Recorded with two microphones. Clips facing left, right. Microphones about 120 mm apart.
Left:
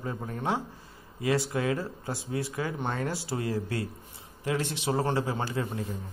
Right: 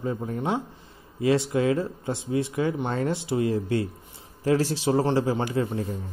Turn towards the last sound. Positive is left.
turn(degrees=-25)  # may be behind; listen again after turning